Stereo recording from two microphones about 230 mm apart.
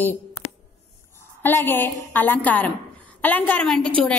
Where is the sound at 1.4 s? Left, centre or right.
Centre.